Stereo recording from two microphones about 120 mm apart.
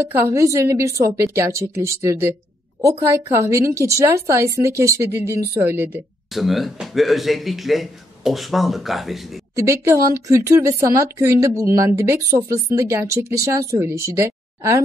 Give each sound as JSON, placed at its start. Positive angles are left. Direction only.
{"t": 0.1, "sound": "a woman's voice", "side_deg": -20}
{"t": 6.3, "sound": "speech", "side_deg": 0}
{"t": 9.6, "sound": "a woman's voice", "side_deg": -25}